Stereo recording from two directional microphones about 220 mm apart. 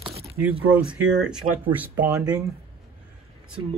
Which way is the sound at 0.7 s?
5° right (ahead or behind).